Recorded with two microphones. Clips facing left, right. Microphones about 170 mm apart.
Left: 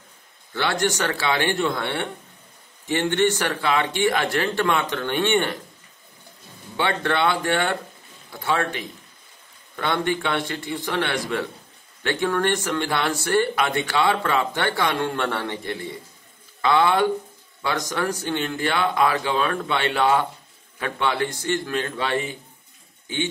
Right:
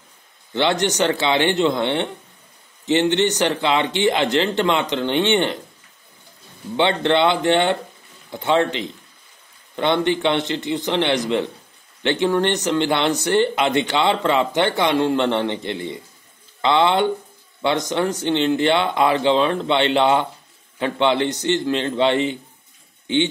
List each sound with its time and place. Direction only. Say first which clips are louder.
0.5 s speech: right 4 dB; 20° right (ahead or behind)
6.8 s speech: right 5 dB; 25° right (ahead or behind)